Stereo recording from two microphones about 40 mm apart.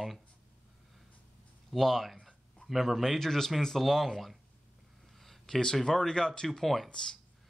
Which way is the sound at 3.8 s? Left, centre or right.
Centre.